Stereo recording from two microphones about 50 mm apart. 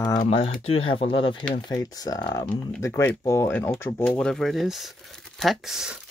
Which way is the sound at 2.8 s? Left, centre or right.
Left.